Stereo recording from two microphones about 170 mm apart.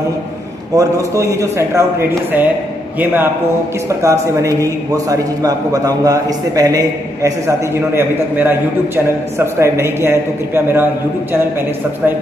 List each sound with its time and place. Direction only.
0.7 s a man's voice: 20° right (ahead or behind)
4.0 s a man's voice: 20° right (ahead or behind)